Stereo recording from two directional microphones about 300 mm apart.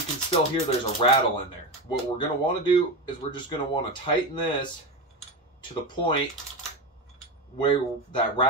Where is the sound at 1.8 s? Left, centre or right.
Centre.